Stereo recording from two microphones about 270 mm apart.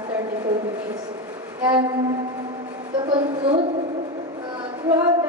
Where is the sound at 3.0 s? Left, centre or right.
Centre.